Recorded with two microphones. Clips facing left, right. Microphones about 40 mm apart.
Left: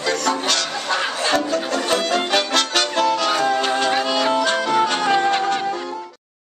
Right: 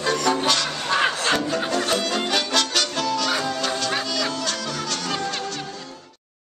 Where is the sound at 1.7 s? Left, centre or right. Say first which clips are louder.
Left 4 dB; centre.